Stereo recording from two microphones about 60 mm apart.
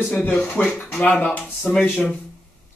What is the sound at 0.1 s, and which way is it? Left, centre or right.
Speech, left.